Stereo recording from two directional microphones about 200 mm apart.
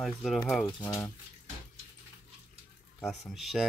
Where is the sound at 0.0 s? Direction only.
Centre (ahead or behind).